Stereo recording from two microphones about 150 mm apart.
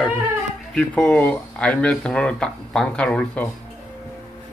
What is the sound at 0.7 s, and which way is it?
Speech, 5° left (ahead or behind).